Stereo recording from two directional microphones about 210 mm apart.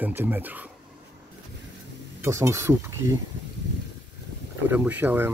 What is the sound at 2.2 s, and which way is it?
Speech, 15° right (ahead or behind).